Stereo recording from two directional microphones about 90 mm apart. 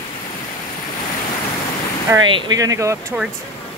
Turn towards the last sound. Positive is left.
turn(degrees=-35)  # may be behind; listen again after turning